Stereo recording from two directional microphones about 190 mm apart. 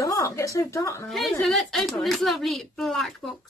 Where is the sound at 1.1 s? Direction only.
Centre (ahead or behind).